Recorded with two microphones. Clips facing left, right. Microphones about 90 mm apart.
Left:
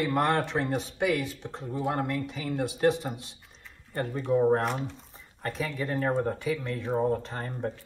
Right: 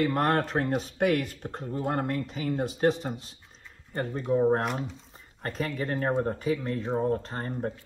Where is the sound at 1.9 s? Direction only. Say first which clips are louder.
Right 1 dB; 40° right (ahead or behind).